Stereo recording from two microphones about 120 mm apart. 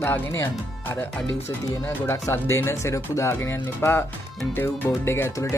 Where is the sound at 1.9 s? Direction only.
20° left (ahead or behind).